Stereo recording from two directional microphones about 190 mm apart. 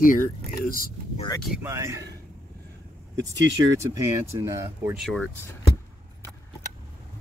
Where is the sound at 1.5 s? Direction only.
10° right (ahead or behind).